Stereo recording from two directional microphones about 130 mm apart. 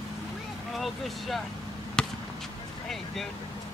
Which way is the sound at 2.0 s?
5° left (ahead or behind).